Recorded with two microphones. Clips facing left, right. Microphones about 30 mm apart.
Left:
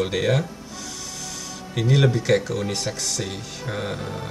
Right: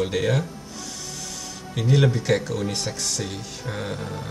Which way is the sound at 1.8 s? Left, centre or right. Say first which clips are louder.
Left 1 dB; centre.